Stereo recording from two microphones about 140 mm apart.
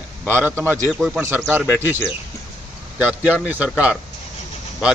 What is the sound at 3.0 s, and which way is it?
A man's voice, 10° right (ahead or behind).